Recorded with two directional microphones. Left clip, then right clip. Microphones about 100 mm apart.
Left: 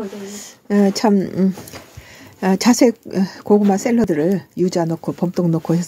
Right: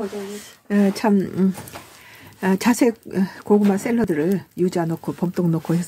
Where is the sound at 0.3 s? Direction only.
40° left (ahead or behind).